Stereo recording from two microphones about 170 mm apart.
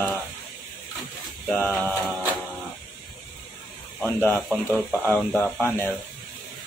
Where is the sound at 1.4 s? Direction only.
10° left (ahead or behind).